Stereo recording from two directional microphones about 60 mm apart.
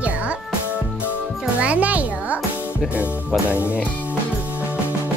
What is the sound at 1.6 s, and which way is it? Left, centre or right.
Music, right.